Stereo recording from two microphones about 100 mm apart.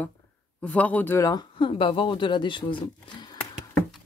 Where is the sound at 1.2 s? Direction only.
40° left (ahead or behind).